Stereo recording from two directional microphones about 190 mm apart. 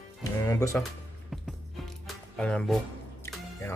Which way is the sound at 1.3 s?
Centre (ahead or behind).